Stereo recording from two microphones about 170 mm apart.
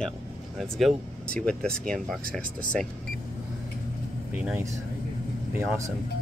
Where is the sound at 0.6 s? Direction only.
5° left (ahead or behind).